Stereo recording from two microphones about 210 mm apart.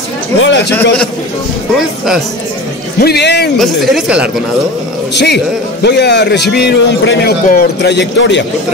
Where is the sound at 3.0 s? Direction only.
50° left (ahead or behind).